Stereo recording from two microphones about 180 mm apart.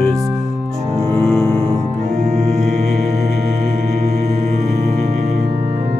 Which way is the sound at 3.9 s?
40° right (ahead or behind).